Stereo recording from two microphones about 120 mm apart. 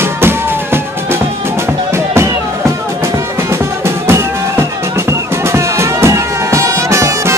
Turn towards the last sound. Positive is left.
turn(degrees=-25)  # may be behind; listen again after turning